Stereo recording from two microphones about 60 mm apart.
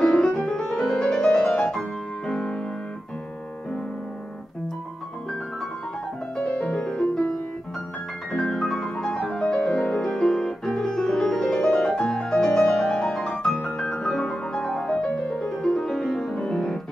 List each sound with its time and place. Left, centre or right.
0.0 s music: centre
6.3 s music: centre
8.3 s music: centre